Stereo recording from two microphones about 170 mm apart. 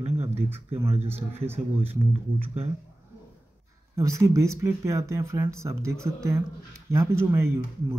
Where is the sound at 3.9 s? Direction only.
20° right (ahead or behind).